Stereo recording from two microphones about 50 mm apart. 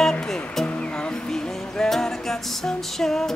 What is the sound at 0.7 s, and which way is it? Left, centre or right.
Music, left.